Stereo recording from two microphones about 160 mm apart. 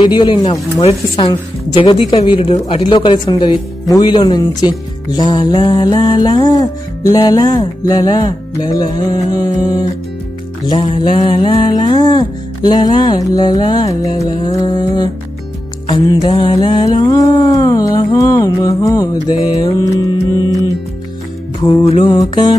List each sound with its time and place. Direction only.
0.0 s music: 30° left (ahead or behind)
1.2 s a woman's voice: 30° left (ahead or behind)
2.7 s music: 30° left (ahead or behind)
21.5 s music: 30° left (ahead or behind)